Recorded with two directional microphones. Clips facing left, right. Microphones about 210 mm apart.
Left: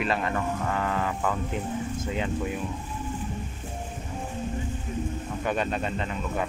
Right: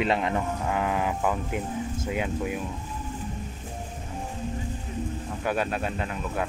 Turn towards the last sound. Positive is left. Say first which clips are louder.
# even
turn(degrees=-5)  # may be behind; listen again after turning